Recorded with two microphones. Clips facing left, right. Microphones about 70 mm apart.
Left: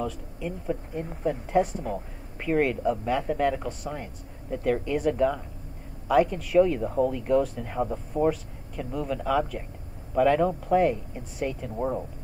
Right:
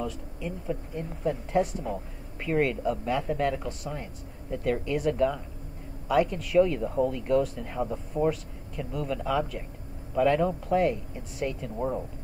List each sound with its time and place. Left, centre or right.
0.0 s speech: left